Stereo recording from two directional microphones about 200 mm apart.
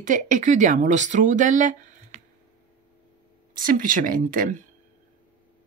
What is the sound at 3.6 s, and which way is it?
Speech, 40° right (ahead or behind).